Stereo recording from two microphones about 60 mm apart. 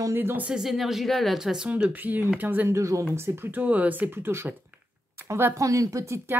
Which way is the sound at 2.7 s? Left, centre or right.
Right.